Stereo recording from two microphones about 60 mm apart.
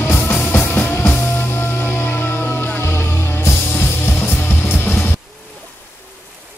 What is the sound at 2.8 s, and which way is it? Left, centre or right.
Music, left.